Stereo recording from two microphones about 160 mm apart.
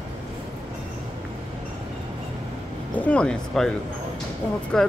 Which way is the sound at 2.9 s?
10° left (ahead or behind).